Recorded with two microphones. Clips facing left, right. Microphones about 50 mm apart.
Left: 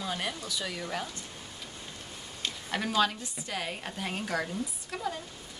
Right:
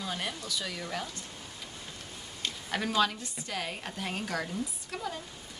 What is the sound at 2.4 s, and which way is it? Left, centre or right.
Speech, centre.